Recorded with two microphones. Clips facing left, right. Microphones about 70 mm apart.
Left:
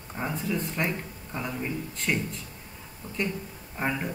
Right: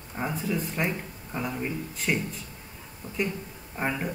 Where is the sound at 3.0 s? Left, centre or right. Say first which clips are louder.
Even; right.